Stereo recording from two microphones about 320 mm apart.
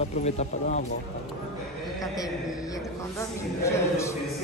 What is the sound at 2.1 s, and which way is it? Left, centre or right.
A man's voice, centre.